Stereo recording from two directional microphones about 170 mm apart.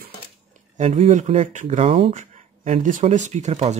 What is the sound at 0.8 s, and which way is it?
Speech, 40° right (ahead or behind).